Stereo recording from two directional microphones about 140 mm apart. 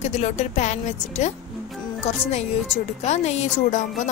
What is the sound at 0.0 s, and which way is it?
A woman's voice, 55° left (ahead or behind).